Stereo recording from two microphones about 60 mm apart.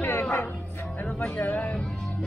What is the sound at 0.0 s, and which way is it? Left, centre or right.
Music, left.